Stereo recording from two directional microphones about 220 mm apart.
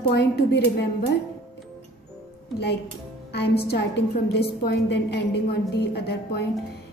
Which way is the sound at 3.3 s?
50° left (ahead or behind).